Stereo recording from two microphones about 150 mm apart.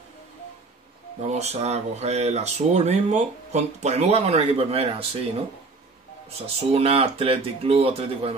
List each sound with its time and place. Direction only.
1.2 s speech: 45° right (ahead or behind)
6.4 s speech: 40° right (ahead or behind)